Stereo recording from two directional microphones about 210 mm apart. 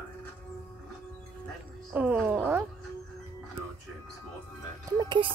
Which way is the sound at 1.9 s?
5° right (ahead or behind).